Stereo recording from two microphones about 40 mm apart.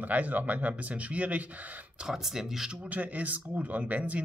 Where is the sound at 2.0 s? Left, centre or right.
Centre.